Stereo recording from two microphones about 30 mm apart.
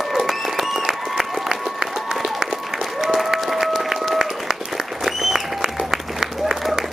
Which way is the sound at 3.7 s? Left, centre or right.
Centre.